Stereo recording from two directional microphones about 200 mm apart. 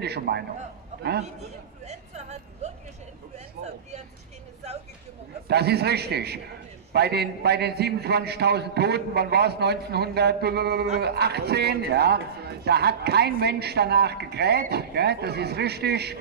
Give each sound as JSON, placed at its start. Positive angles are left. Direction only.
{"t": 0.0, "sound": "speech", "side_deg": -55}
{"t": 1.9, "sound": "vehicle", "side_deg": -35}
{"t": 5.5, "sound": "a man's voice", "side_deg": -55}